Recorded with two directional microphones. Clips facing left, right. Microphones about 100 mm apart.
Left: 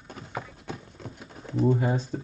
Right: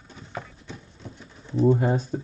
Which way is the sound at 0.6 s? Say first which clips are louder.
Left 3 dB; 50° left (ahead or behind).